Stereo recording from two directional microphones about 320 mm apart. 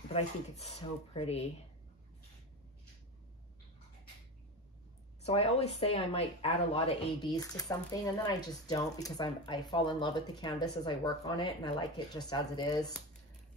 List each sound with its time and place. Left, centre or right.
0.1 s speech: centre
5.2 s speech: centre